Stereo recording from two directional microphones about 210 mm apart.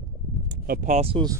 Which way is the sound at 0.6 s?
40° right (ahead or behind).